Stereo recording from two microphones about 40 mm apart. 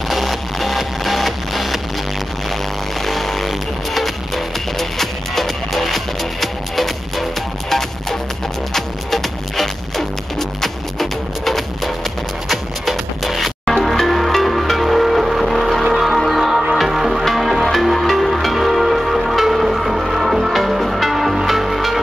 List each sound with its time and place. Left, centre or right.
0.1 s music: centre
3.0 s music: centre
8.7 s music: centre